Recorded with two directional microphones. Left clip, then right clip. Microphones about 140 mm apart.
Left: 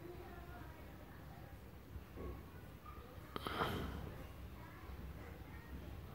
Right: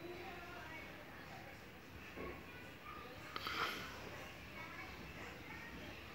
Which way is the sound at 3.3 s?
85° left.